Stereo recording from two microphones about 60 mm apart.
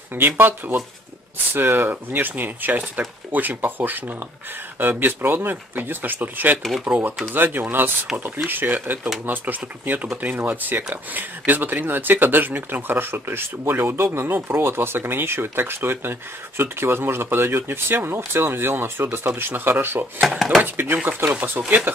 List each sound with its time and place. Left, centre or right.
0.4 s speech: right
20.2 s speech: centre
20.6 s speech: right